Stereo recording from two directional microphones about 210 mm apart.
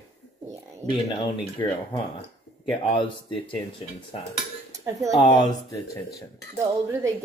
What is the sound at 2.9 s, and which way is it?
Speech, 25° left (ahead or behind).